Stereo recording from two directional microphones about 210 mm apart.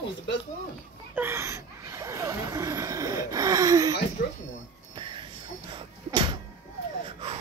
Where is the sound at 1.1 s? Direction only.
10° right (ahead or behind).